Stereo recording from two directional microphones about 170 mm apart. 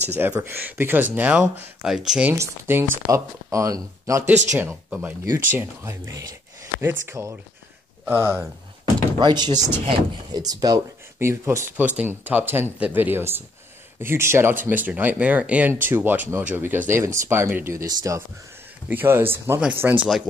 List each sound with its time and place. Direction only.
0.1 s speech: 10° right (ahead or behind)
2.3 s speech: 15° right (ahead or behind)
4.3 s speech: 45° right (ahead or behind)
4.6 s speech: 10° right (ahead or behind)